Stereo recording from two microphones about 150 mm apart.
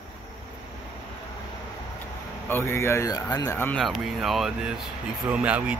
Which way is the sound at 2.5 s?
15° left (ahead or behind).